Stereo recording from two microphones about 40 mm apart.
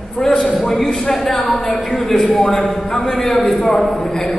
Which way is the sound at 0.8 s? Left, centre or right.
Centre.